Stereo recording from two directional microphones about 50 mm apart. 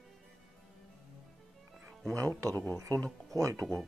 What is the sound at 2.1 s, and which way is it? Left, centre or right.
Speech, right.